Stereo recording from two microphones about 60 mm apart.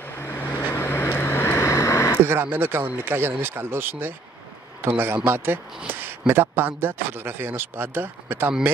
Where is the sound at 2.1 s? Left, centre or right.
Right.